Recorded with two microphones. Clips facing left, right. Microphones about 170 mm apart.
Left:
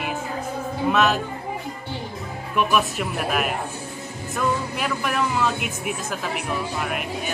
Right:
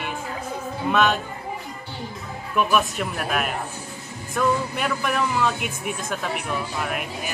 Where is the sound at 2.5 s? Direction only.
Centre (ahead or behind).